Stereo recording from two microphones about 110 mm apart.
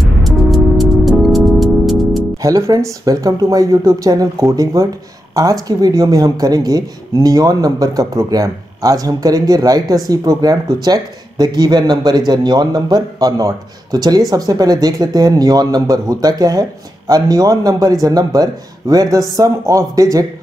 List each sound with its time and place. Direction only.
0.2 s music: centre (ahead or behind)
2.4 s speech: 30° right (ahead or behind)